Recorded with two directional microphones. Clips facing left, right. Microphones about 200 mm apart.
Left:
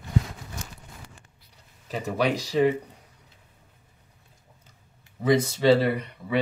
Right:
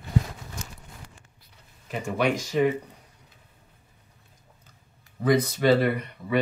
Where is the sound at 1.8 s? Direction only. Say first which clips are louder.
Even; 35° left (ahead or behind).